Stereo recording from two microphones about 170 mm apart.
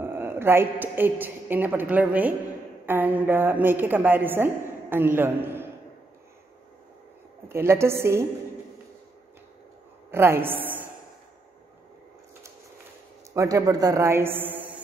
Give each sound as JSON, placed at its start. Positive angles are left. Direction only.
{"t": 0.0, "sound": "a woman's voice", "side_deg": -15}
{"t": 7.4, "sound": "a woman's voice", "side_deg": -15}
{"t": 10.1, "sound": "a woman's voice", "side_deg": -15}
{"t": 13.3, "sound": "a woman's voice", "side_deg": -20}
{"t": 14.4, "sound": "mantra", "side_deg": -10}